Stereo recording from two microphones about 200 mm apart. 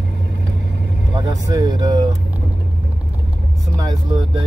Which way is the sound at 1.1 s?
20° right (ahead or behind).